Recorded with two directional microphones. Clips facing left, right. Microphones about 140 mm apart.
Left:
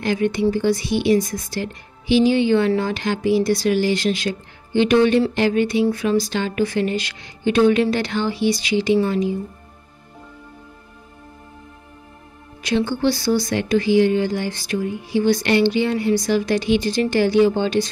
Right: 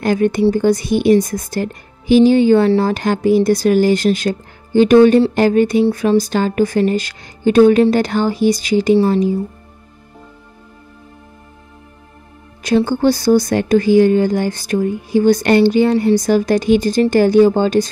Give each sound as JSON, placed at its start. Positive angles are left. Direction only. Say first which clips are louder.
{"t": 0.0, "sound": "speech", "louder": "right 5 dB", "side_deg": -45}
{"t": 5.9, "sound": "speech", "louder": "right 5 dB", "side_deg": -35}
{"t": 6.1, "sound": "speech", "louder": "right 6 dB", "side_deg": -45}
{"t": 12.6, "sound": "speech", "louder": "right 6 dB", "side_deg": -45}